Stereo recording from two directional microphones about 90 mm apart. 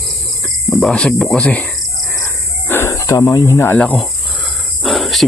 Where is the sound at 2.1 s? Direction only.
30° left (ahead or behind).